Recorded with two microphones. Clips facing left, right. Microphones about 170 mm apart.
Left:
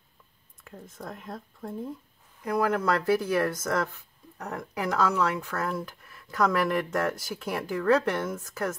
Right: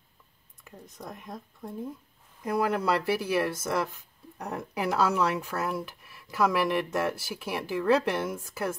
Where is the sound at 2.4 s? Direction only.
15° right (ahead or behind).